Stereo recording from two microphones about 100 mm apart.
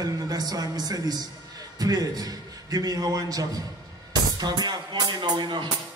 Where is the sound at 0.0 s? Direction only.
40° right (ahead or behind).